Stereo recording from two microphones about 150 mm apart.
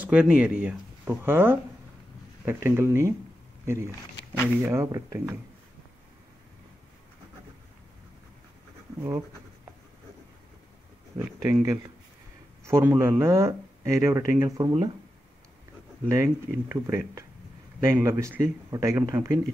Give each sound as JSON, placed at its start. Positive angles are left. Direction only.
{"t": 0.0, "sound": "speech", "side_deg": -10}
{"t": 11.6, "sound": "speech", "side_deg": -20}
{"t": 16.1, "sound": "speech", "side_deg": -15}